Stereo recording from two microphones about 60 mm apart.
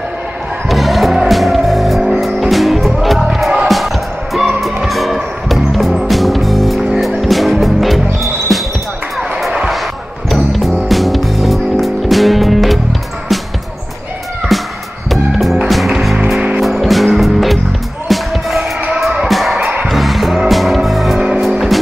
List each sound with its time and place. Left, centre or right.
0.7 s music: centre
8.5 s basketball bounce: centre
10.3 s music: centre
14.5 s music: centre
19.6 s music: right
19.9 s music: centre